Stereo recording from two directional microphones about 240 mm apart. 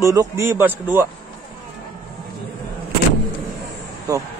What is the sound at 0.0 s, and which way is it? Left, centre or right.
Speech, centre.